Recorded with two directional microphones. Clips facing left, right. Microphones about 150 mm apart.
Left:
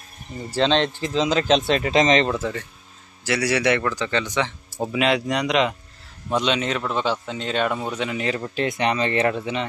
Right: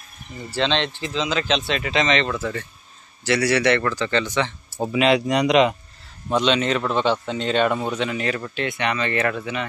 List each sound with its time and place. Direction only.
0.4 s speech: 40° left (ahead or behind)
3.3 s speech: 10° left (ahead or behind)
4.9 s a man's voice: centre (ahead or behind)
6.3 s a man's voice: 10° left (ahead or behind)
8.5 s speech: 35° left (ahead or behind)